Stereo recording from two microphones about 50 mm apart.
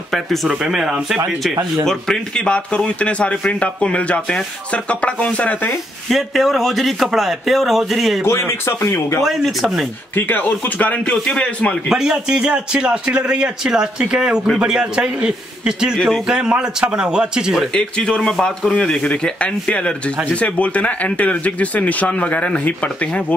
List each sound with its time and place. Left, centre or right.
0.1 s speech: centre
0.5 s a man's voice: centre
1.9 s speech: centre
6.0 s speech: centre
8.3 s speech: left
9.2 s speech: centre
10.1 s speech: left
11.2 s speech: left
11.9 s a man's voice: centre
18.3 s speech: centre; by 23.2 s left